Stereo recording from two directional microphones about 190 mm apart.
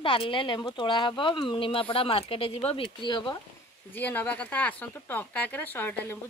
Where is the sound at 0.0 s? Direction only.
25° left (ahead or behind).